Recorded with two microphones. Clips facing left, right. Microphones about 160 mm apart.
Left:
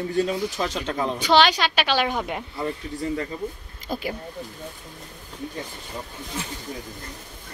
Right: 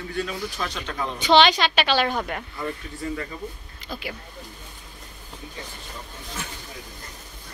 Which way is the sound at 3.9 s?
45° left (ahead or behind).